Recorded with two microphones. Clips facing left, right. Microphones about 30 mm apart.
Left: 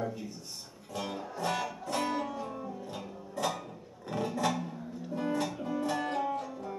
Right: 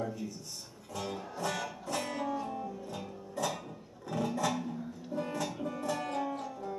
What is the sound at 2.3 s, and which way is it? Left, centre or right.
Music, centre.